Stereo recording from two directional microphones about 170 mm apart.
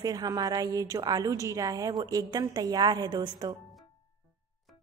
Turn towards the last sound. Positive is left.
turn(degrees=-25)  # may be behind; listen again after turning